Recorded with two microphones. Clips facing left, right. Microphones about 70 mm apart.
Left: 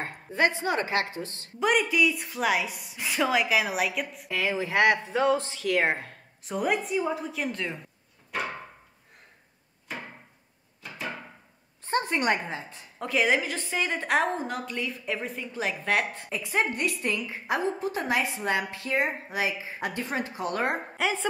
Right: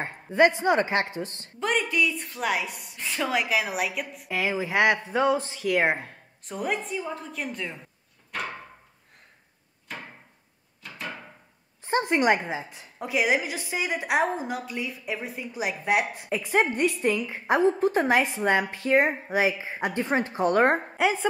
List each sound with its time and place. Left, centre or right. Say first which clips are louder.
0.0 s a woman's voice: right 5 dB; right
1.6 s a woman's voice: left 2 dB; centre
4.4 s a woman's voice: right 1 dB; centre
6.4 s a woman's voice: left 2 dB; centre
11.8 s a woman's voice: right 3 dB; centre
17.1 s a woman's voice: right 3 dB; centre
17.7 s a woman's voice: right 6 dB; right
21.0 s a woman's voice: right 3 dB; centre